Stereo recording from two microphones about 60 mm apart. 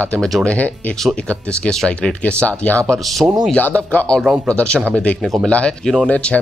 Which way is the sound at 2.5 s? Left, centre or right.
Left.